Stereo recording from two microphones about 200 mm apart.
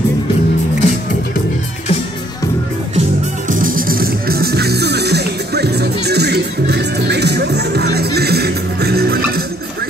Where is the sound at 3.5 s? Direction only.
40° right (ahead or behind).